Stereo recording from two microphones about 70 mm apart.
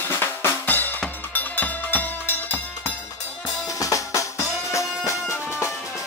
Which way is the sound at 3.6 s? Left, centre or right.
Left.